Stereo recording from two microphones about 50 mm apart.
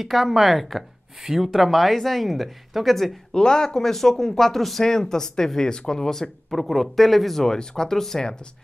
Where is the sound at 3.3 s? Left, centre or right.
Centre.